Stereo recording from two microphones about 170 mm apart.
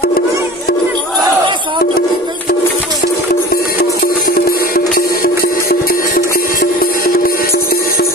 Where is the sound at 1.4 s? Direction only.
30° right (ahead or behind).